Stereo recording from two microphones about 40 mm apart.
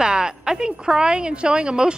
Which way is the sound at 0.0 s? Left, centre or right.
Right.